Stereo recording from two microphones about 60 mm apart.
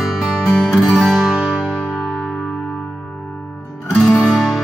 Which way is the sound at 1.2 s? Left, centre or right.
Centre.